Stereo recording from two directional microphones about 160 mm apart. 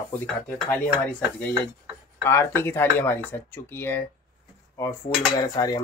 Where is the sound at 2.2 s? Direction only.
15° left (ahead or behind).